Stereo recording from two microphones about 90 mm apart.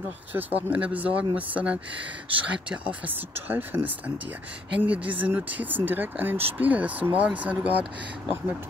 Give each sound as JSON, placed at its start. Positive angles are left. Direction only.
{"t": 0.3, "sound": "speech", "side_deg": -20}